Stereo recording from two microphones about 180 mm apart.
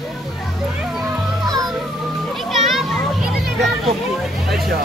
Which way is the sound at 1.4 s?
20° right (ahead or behind).